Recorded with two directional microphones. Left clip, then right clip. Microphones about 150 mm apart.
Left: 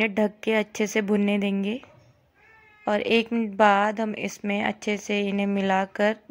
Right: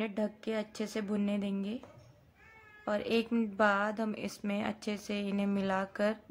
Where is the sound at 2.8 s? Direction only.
25° left (ahead or behind).